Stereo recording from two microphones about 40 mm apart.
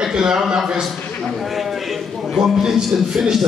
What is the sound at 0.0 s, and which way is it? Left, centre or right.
Speech, centre.